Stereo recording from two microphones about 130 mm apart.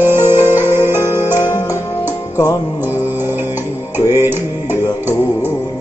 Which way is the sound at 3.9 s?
20° right (ahead or behind).